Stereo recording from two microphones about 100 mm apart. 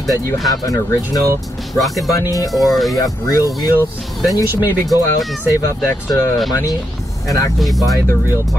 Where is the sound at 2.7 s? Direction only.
Centre (ahead or behind).